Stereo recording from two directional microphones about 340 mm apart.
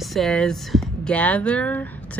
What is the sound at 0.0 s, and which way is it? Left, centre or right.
Speech, centre.